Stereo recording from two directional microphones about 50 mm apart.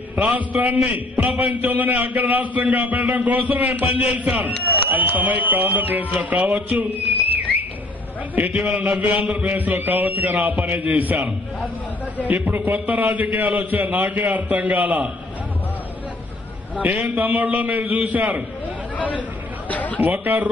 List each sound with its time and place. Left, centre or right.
0.3 s a man's voice: right
8.4 s a man's voice: right
12.3 s a man's voice: right
16.7 s a man's voice: right
18.9 s speech: left
19.7 s chatter: left
20.0 s a man's voice: right